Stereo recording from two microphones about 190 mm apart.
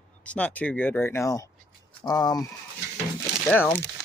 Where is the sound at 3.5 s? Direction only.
10° left (ahead or behind).